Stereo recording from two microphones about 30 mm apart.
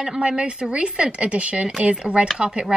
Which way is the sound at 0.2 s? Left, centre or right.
Right.